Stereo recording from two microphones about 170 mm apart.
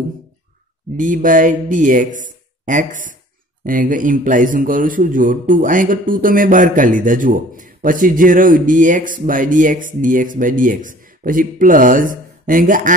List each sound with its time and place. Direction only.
0.9 s a man's voice: 50° right (ahead or behind)